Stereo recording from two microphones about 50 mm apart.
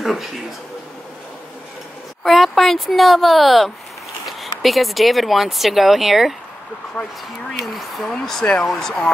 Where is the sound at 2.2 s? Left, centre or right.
Centre.